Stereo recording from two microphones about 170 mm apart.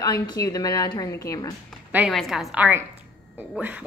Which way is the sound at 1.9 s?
Centre (ahead or behind).